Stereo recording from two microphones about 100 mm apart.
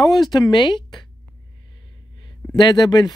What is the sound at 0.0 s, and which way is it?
Speech, 45° left (ahead or behind).